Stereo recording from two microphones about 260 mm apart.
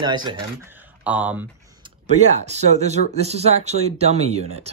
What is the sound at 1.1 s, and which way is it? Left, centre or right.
Speech, centre.